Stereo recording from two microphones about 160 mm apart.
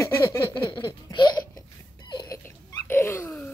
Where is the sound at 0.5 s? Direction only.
25° left (ahead or behind).